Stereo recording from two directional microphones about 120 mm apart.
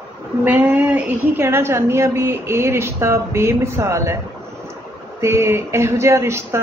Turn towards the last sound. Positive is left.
turn(degrees=-20)  # may be behind; listen again after turning